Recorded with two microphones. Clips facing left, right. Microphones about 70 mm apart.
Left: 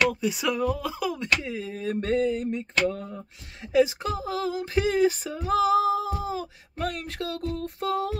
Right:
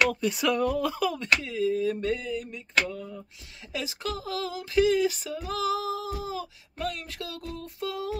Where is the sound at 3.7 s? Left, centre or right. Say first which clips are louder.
Left 11 dB; left.